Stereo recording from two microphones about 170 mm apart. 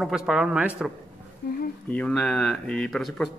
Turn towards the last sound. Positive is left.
turn(degrees=5)  # may be behind; listen again after turning